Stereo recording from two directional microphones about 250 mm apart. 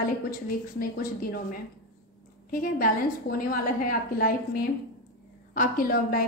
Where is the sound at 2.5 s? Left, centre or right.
Left.